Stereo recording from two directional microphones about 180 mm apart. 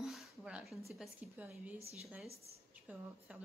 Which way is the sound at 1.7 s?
35° right (ahead or behind).